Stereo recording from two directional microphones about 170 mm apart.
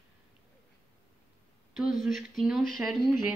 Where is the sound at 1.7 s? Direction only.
Centre (ahead or behind).